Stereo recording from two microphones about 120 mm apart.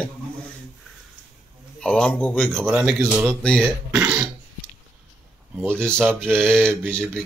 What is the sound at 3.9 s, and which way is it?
Burping, 15° right (ahead or behind).